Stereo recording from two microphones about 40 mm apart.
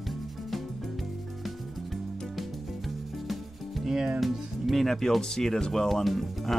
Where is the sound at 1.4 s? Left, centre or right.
Centre.